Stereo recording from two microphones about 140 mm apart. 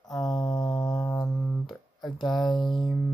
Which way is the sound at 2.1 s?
30° left (ahead or behind).